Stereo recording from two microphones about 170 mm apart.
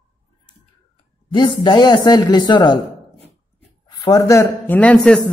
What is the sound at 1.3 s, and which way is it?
A man's voice, 25° left (ahead or behind).